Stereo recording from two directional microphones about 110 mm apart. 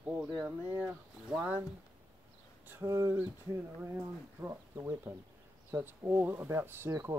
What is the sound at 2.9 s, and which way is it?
Speech, 30° right (ahead or behind).